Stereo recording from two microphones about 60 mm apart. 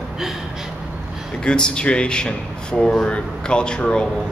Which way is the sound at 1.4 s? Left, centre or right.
Centre.